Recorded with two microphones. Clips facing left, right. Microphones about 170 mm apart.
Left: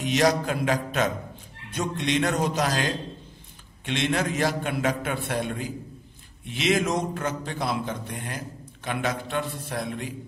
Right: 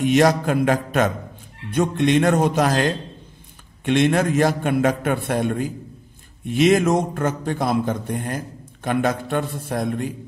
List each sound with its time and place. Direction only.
0.0 s a man's voice: 55° right (ahead or behind)